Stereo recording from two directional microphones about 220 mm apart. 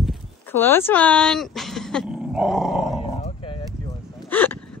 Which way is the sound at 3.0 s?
25° left (ahead or behind).